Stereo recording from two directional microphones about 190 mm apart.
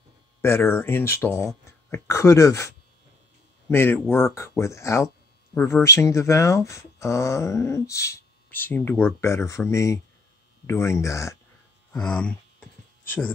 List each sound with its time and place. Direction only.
0.4 s a man's voice: 10° left (ahead or behind)